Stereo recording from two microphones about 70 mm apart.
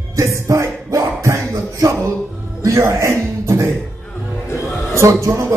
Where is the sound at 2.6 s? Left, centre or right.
Right.